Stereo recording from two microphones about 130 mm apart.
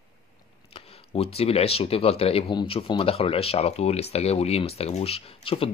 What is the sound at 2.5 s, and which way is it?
Speech, 40° left (ahead or behind).